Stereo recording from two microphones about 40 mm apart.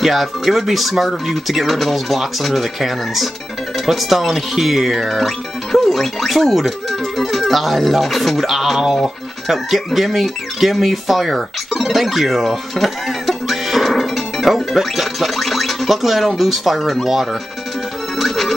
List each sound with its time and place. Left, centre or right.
0.0 s speech: centre
18.2 s music: centre